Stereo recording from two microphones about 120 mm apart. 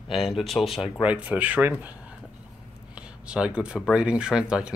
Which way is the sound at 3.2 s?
10° right (ahead or behind).